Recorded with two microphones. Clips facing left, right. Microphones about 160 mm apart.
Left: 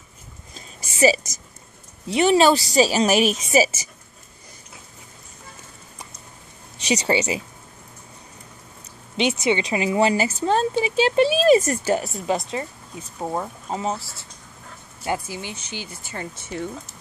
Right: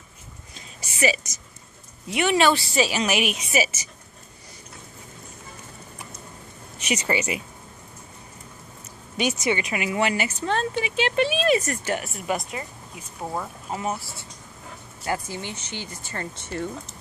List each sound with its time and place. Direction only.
0.6 s a sound: 35° left (ahead or behind)
2.0 s speech: 35° left (ahead or behind)
6.9 s speech: 30° left (ahead or behind)
9.1 s speech: 25° left (ahead or behind)
15.2 s speech: 10° left (ahead or behind)